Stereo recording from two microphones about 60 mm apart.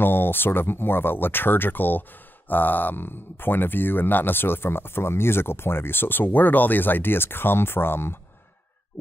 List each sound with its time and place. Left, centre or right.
0.0 s speech: left